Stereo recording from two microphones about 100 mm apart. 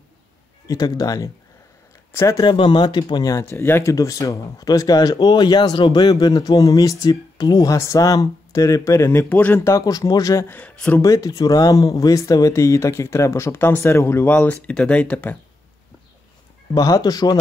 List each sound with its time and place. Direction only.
0.7 s speech: 40° left (ahead or behind)
2.1 s speech: 30° left (ahead or behind)
2.4 s speech: 55° left (ahead or behind); by 3.4 s 40° left (ahead or behind)
3.4 s speech: 25° left (ahead or behind)
9.2 s speech: 15° left (ahead or behind)
9.7 s speech: 35° left (ahead or behind)
10.5 s speech: 15° left (ahead or behind)
11.0 s speech: 35° left (ahead or behind); by 15.3 s 15° left (ahead or behind)
16.7 s speech: 40° left (ahead or behind)